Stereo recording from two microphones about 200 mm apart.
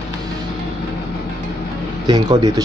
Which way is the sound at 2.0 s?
20° right (ahead or behind).